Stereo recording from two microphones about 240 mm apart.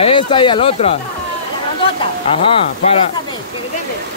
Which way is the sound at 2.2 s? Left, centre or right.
Left.